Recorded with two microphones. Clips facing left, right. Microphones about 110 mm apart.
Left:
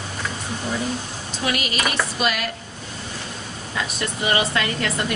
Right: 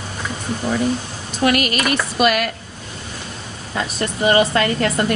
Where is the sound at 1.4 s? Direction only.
60° right (ahead or behind).